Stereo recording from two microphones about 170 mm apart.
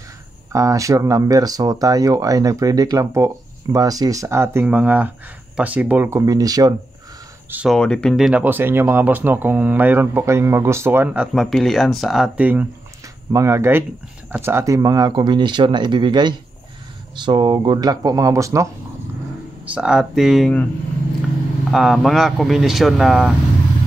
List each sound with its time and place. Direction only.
0.5 s speech: 20° right (ahead or behind)
7.5 s speech: centre (ahead or behind); by 18.7 s 15° right (ahead or behind)
19.6 s speech: 5° right (ahead or behind)
21.6 s speech: centre (ahead or behind)